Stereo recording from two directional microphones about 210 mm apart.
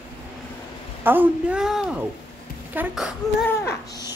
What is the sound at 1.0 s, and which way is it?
A woman's voice, 10° right (ahead or behind).